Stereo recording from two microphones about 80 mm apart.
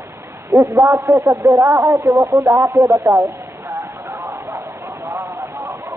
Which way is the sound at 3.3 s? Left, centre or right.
Right.